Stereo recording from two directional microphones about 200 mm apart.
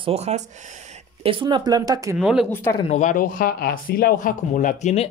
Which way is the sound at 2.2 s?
5° right (ahead or behind).